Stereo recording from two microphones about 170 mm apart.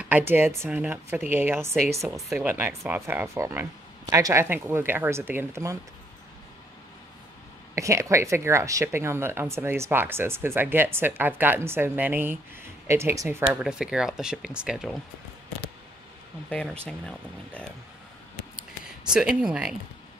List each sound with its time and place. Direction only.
0.0 s speech: 10° right (ahead or behind)
2.0 s speech: centre (ahead or behind)
7.7 s speech: 15° right (ahead or behind)
13.6 s speech: 5° right (ahead or behind)
16.4 s speech: 5° left (ahead or behind)
19.1 s speech: 5° right (ahead or behind)